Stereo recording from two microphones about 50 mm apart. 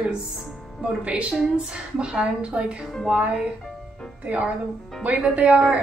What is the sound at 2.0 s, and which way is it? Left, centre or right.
Speech, right.